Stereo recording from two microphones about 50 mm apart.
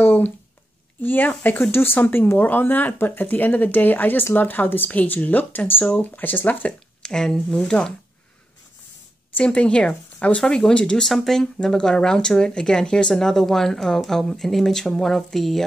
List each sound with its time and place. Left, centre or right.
0.0 s a sound: left
1.0 s speech: left
7.0 s speech: centre
9.4 s speech: left
10.4 s speech: centre
11.1 s speech: centre
13.1 s speech: centre